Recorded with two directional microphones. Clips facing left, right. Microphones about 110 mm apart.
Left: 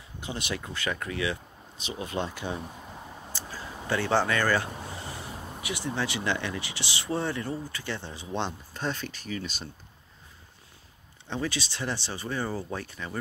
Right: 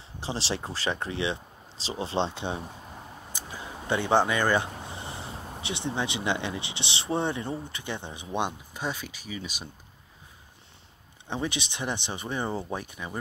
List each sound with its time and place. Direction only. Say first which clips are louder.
0.2 s speech: right 3 dB; 30° right (ahead or behind); by 9.7 s 10° right (ahead or behind)
11.2 s speech: even; 20° right (ahead or behind)